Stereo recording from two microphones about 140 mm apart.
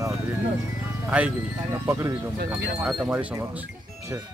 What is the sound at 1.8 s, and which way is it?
Speech, 20° right (ahead or behind).